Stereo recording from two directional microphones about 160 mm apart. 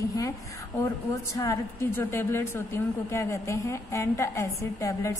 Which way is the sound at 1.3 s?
20° left (ahead or behind).